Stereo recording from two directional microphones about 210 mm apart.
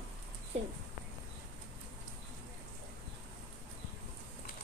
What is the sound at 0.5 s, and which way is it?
Speech, 30° right (ahead or behind).